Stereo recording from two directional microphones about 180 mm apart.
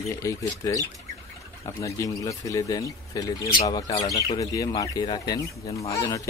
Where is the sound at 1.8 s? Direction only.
20° left (ahead or behind).